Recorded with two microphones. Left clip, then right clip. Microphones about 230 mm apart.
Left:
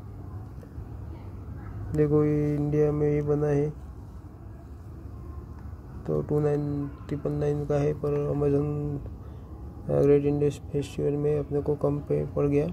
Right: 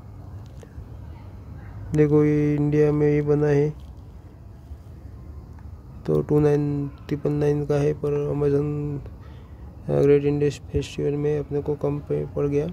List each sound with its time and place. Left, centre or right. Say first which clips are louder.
1.9 s speech: right 5 dB; right
6.0 s speech: right 6 dB; right
9.8 s speech: right 3 dB; right